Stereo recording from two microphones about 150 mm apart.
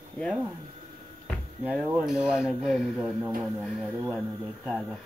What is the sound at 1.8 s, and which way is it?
Speech, 5° right (ahead or behind).